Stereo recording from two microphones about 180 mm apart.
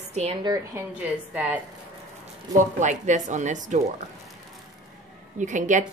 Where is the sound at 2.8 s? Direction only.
40° right (ahead or behind).